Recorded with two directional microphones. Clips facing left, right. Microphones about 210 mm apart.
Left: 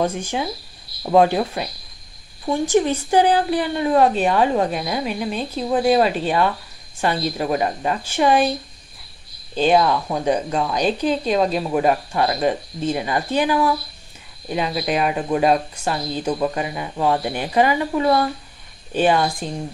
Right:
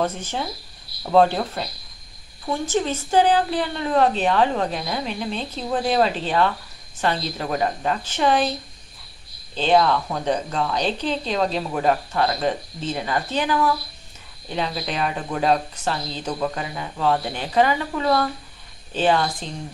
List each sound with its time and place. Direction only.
0.0 s a woman's voice: 10° left (ahead or behind)
9.6 s a woman's voice: 10° left (ahead or behind)